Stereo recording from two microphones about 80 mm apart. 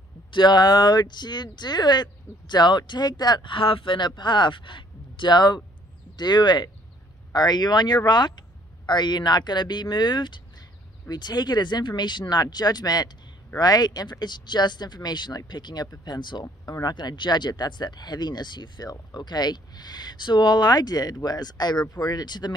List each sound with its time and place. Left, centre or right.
0.3 s speech: left